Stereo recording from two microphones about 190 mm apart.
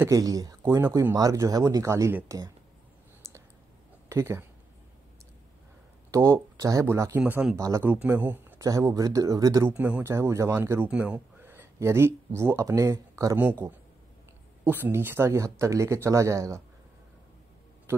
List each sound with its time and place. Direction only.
0.0 s speech: 15° right (ahead or behind)
3.2 s clicking: 15° right (ahead or behind)
4.1 s speech: 15° right (ahead or behind)
6.1 s speech: 15° right (ahead or behind)
14.6 s speech: 10° right (ahead or behind)